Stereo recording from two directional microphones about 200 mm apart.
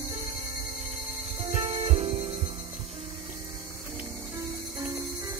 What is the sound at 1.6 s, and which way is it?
Music, 35° right (ahead or behind).